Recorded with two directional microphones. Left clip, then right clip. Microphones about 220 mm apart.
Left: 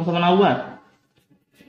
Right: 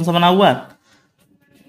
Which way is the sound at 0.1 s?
45° right (ahead or behind).